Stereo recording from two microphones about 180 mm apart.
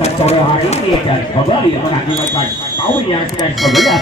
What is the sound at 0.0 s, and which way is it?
Speech, 35° left (ahead or behind).